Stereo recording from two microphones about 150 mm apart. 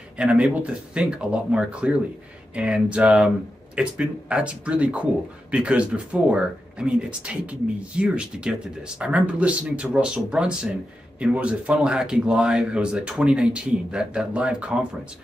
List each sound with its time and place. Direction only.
0.2 s speech: 10° right (ahead or behind)